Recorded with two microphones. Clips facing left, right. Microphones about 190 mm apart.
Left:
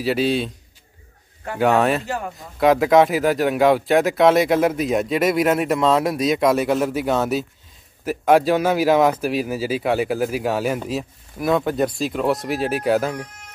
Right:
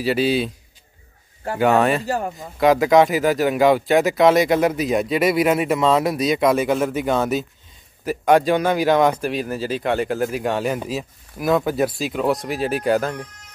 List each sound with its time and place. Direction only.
0.0 s speech: centre (ahead or behind)
1.6 s speech: centre (ahead or behind)
2.0 s speech: 35° right (ahead or behind)
2.3 s speech: centre (ahead or behind)